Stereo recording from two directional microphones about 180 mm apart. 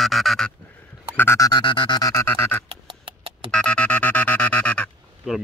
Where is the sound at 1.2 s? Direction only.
15° left (ahead or behind).